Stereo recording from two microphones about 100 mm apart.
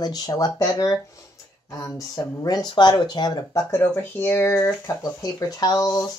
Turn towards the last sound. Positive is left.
turn(degrees=40)  # may be behind; listen again after turning